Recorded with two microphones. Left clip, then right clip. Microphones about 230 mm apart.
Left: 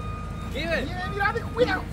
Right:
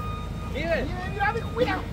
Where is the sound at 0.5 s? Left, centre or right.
Left.